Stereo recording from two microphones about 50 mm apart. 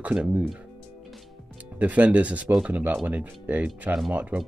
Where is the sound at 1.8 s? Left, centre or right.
Right.